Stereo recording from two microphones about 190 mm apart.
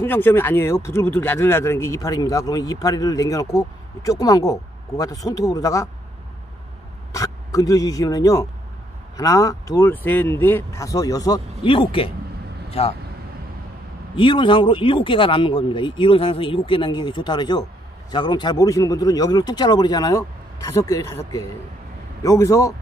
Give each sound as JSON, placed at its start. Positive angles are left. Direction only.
{"t": 0.0, "sound": "speech", "side_deg": 10}
{"t": 7.2, "sound": "speech", "side_deg": 20}
{"t": 14.1, "sound": "speech", "side_deg": 25}
{"t": 22.2, "sound": "speech", "side_deg": 15}